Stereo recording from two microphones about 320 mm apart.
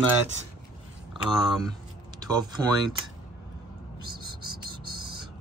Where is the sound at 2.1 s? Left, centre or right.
Centre.